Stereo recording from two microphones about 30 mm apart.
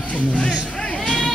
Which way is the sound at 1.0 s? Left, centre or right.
Centre.